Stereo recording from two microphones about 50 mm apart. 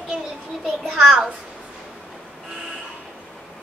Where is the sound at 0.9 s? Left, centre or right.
Centre.